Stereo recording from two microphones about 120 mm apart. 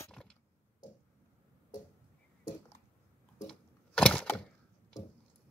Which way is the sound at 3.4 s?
5° left (ahead or behind).